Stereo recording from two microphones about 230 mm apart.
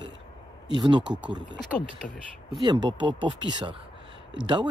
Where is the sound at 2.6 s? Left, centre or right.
Centre.